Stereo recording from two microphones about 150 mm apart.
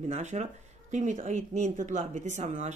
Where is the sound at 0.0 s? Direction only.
50° right (ahead or behind).